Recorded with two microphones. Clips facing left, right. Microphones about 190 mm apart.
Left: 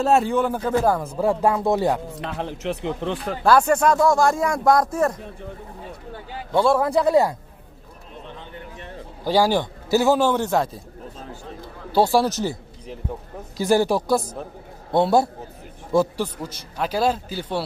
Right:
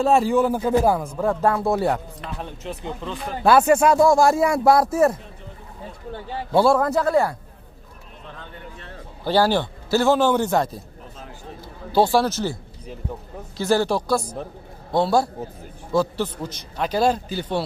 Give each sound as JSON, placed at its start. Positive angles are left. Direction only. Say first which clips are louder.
{"t": 0.0, "sound": "speech", "louder": "right 1 dB", "side_deg": 0}
{"t": 1.4, "sound": "speech", "louder": "right 1 dB", "side_deg": 15}
{"t": 2.3, "sound": "speech", "louder": "left 5 dB", "side_deg": 80}
{"t": 3.4, "sound": "a man's voice", "louder": "right 2 dB", "side_deg": -5}
{"t": 6.5, "sound": "speech", "louder": "right 1 dB", "side_deg": -5}
{"t": 6.8, "sound": "speech", "louder": "left 2 dB", "side_deg": 15}
{"t": 8.4, "sound": "a man's voice", "louder": "left 2 dB", "side_deg": 15}
{"t": 11.9, "sound": "speech", "louder": "even", "side_deg": 5}
{"t": 13.6, "sound": "a man's voice", "louder": "left 1 dB", "side_deg": 15}
{"t": 16.2, "sound": "speech", "louder": "right 1 dB", "side_deg": 10}